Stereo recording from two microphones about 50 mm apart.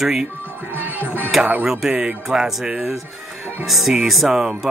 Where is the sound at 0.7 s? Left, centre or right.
Right.